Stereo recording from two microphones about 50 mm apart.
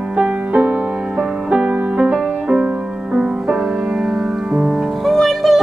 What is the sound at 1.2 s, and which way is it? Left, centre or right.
Music, centre.